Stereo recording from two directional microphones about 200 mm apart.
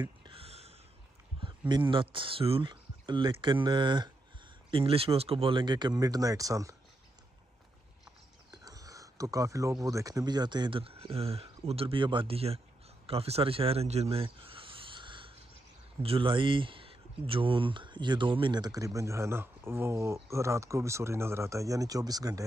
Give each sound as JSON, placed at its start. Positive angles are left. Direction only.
{"t": 0.2, "sound": "a sound", "side_deg": -30}
{"t": 1.7, "sound": "speech", "side_deg": -25}
{"t": 8.5, "sound": "speech", "side_deg": -20}